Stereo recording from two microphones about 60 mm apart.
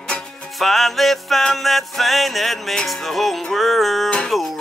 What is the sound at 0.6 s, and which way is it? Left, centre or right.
Music, centre.